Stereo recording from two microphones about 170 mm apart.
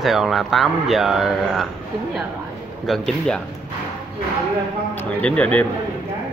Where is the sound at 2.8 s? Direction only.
Centre (ahead or behind).